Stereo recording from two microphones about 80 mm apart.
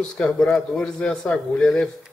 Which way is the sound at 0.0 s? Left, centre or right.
Centre.